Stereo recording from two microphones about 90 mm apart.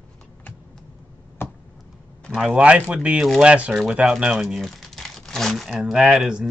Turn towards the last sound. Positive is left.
turn(degrees=-5)  # may be behind; listen again after turning